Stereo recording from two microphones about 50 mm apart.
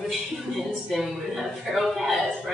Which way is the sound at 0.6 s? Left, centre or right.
Centre.